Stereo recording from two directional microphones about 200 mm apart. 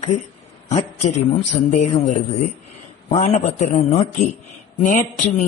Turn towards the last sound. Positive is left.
turn(degrees=35)  # may be behind; listen again after turning